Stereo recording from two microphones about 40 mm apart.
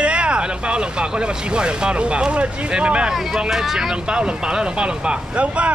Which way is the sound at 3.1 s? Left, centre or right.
Centre.